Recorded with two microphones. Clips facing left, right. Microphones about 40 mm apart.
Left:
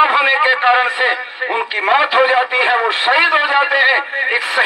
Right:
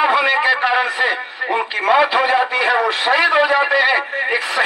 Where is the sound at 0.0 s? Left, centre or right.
Left.